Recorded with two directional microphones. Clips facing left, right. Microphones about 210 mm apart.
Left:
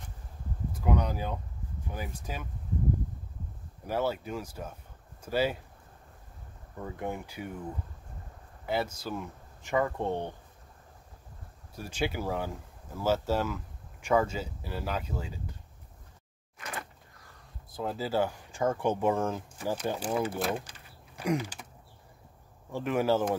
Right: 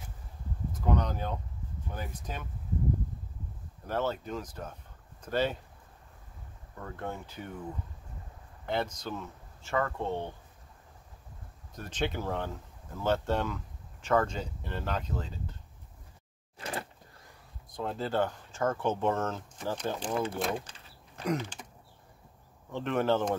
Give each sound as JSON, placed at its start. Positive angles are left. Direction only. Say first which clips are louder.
{"t": 0.7, "sound": "a sound", "louder": "left 1 dB", "side_deg": 10}
{"t": 1.9, "sound": "speech", "louder": "left 1 dB", "side_deg": 10}
{"t": 3.8, "sound": "speech", "louder": "left 1 dB", "side_deg": 10}
{"t": 6.8, "sound": "speech", "louder": "left 3 dB", "side_deg": 15}
{"t": 8.6, "sound": "speech", "louder": "left 1 dB", "side_deg": 5}
{"t": 11.7, "sound": "speech", "louder": "left 1 dB", "side_deg": 10}
{"t": 16.5, "sound": "a sound", "louder": "right 3 dB", "side_deg": -30}
{"t": 17.6, "sound": "speech", "louder": "left 1 dB", "side_deg": 5}
{"t": 21.2, "sound": "creak", "louder": "left 2 dB", "side_deg": 10}
{"t": 22.7, "sound": "speech", "louder": "left 1 dB", "side_deg": 10}